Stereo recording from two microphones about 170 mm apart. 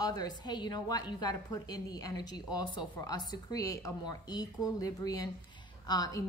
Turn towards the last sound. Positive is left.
turn(degrees=20)  # may be behind; listen again after turning